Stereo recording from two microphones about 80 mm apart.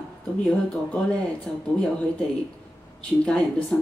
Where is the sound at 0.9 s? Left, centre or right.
Centre.